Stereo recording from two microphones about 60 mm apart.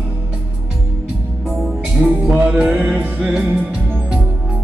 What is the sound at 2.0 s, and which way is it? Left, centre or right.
Music, right.